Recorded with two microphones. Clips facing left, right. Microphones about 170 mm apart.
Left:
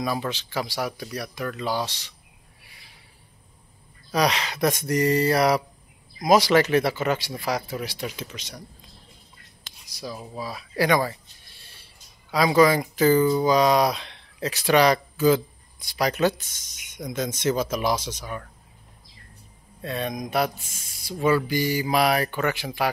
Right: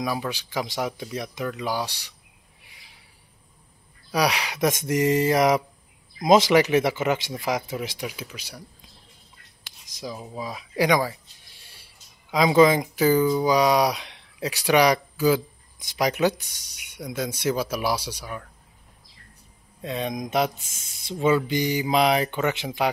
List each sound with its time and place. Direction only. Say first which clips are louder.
0.0 s speech: even; 10° right (ahead or behind)
4.1 s speech: left 1 dB; 10° right (ahead or behind)
10.0 s speech: even; 15° right (ahead or behind)
19.8 s speech: right 1 dB; 15° right (ahead or behind)